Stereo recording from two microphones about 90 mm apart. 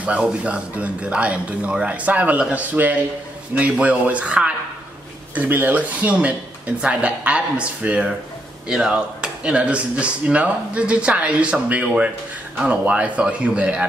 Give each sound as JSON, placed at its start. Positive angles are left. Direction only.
{"t": 0.0, "sound": "speech", "side_deg": -15}